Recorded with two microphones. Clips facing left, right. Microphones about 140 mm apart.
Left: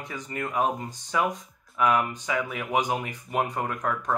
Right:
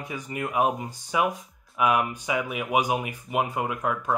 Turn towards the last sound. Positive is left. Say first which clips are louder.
# right 1 dB
turn(degrees=-10)  # may be behind; listen again after turning